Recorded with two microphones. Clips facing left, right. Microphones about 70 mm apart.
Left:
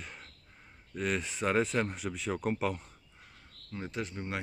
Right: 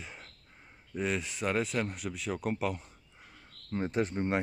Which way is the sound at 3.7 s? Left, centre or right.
Right.